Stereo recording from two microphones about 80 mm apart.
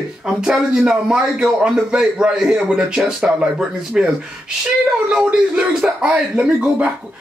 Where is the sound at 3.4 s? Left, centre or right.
Centre.